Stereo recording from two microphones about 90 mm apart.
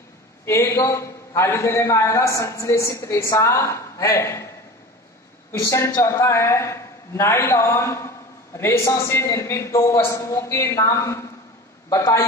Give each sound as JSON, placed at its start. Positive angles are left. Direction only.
{"t": 0.5, "sound": "a man's voice", "side_deg": 30}
{"t": 5.5, "sound": "a man's voice", "side_deg": 30}